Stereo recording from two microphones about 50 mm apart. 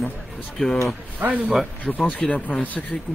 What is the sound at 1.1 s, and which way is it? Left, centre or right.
Speech, right.